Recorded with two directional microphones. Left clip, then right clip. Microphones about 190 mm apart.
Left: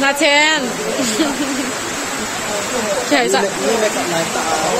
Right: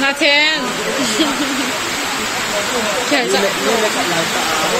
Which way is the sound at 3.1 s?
35° left (ahead or behind).